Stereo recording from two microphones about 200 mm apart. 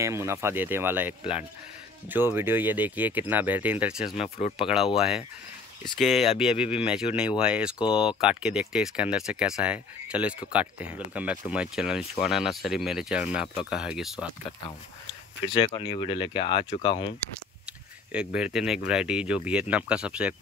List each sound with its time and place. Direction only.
0.0 s speech: 15° right (ahead or behind)
4.2 s speech: 30° left (ahead or behind)
4.9 s speech: centre (ahead or behind)
15.5 s speech: 25° left (ahead or behind)
18.3 s speech: 5° right (ahead or behind)